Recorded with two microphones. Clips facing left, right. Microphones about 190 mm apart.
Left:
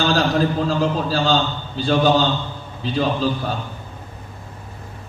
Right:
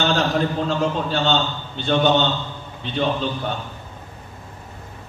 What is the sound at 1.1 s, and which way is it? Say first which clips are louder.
A man's voice: left 2 dB; 25° right (ahead or behind).